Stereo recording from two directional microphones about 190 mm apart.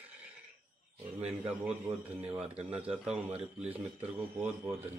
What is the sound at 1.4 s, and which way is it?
A man's voice, 5° right (ahead or behind).